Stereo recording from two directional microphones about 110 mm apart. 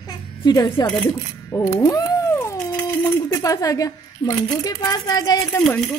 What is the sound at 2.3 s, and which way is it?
Dog, 25° left (ahead or behind).